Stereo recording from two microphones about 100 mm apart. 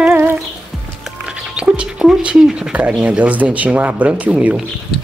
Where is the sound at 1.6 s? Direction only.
10° right (ahead or behind).